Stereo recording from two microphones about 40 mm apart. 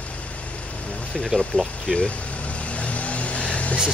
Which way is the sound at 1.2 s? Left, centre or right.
Centre.